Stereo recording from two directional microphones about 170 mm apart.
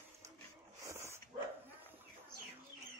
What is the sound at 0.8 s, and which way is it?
Dog, 15° right (ahead or behind).